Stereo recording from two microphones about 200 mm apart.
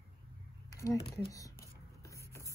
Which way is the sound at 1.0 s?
20° left (ahead or behind).